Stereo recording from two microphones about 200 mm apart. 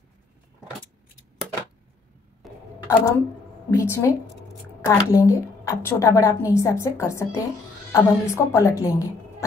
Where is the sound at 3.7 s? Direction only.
15° left (ahead or behind).